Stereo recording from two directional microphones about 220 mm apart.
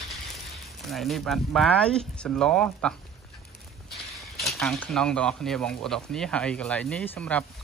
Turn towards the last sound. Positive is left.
turn(degrees=5)  # may be behind; listen again after turning